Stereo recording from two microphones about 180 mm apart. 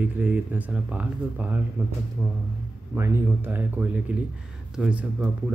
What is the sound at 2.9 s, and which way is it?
Speech, 15° right (ahead or behind).